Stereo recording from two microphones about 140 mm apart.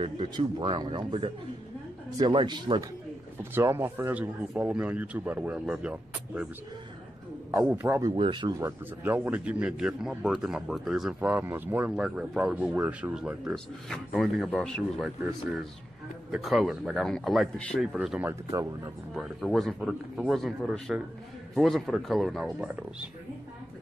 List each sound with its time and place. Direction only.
0.0 s a man's voice: 35° right (ahead or behind)
3.5 s a man's voice: 20° right (ahead or behind)
7.5 s a man's voice: 15° right (ahead or behind)
8.2 s a man's voice: 35° right (ahead or behind)
8.5 s speech: 15° right (ahead or behind)
13.8 s speech: 5° left (ahead or behind)
16.3 s speech: centre (ahead or behind)
17.9 s speech: 10° right (ahead or behind)
18.3 s a man's voice: 20° right (ahead or behind)
19.1 s speech: centre (ahead or behind)